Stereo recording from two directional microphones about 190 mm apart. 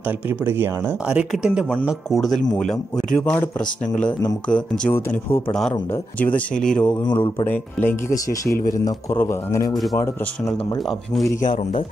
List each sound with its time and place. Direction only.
0.5 s speech: 10° right (ahead or behind); by 3.4 s 5° left (ahead or behind)
4.5 s speech: 5° left (ahead or behind)
7.1 s speech: 25° left (ahead or behind)
7.4 s speech: 10° left (ahead or behind)
8.5 s a man's voice: 50° left (ahead or behind)
9.2 s speech: 15° left (ahead or behind)
11.4 s a man's voice: 45° left (ahead or behind)